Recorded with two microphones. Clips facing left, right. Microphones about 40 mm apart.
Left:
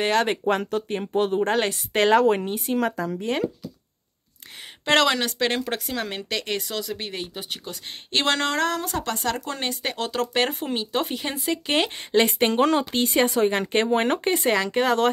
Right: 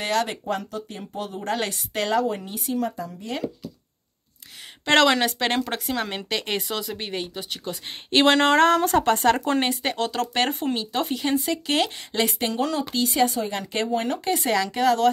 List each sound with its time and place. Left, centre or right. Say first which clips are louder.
0.0 s speech: left 2 dB; left
0.3 s speech: left 6 dB; left
1.4 s speech: left 4 dB; left
2.0 s speech: left 6 dB; left
4.8 s speech: right 2 dB; centre
8.1 s speech: right 5 dB; centre
8.4 s speech: right 6 dB; right
8.6 s speech: right 7 dB; right
9.0 s speech: right 7 dB; right
9.5 s speech: right 6 dB; right
9.8 s speech: right 1 dB; centre
12.3 s speech: left 5 dB; left
13.8 s speech: left 3 dB; left
14.4 s speech: even; left